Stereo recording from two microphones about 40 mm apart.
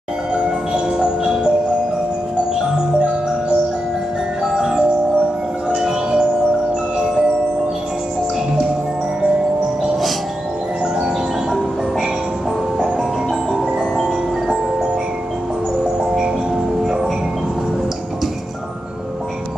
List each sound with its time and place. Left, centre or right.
0.3 s marimba: centre
4.6 s music: centre
12.7 s music: centre
16.0 s music: centre